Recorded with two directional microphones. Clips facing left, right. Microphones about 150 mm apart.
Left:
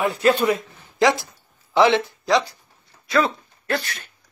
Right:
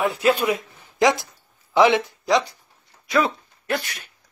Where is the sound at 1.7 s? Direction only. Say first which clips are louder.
Even; 15° right (ahead or behind).